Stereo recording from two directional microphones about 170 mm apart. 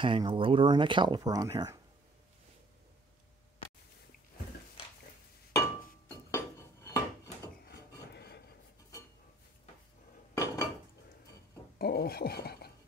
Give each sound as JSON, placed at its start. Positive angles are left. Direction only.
{"t": 0.0, "sound": "speech", "side_deg": -30}
{"t": 6.0, "sound": "dishes", "side_deg": 15}
{"t": 7.6, "sound": "wood", "side_deg": 75}
{"t": 10.3, "sound": "dishes", "side_deg": 15}
{"t": 11.8, "sound": "filing", "side_deg": 65}